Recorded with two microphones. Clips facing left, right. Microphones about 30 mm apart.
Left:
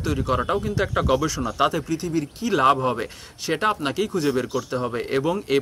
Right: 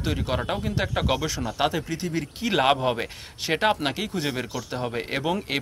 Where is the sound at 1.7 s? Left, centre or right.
Right.